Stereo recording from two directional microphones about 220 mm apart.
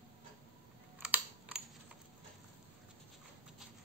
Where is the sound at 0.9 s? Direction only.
5° right (ahead or behind).